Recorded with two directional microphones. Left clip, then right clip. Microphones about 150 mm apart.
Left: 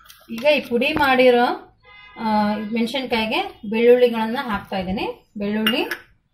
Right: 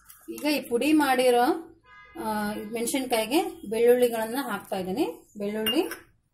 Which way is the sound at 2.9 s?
90° right.